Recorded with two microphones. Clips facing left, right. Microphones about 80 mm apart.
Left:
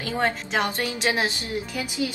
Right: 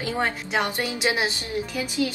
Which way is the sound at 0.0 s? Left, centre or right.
Centre.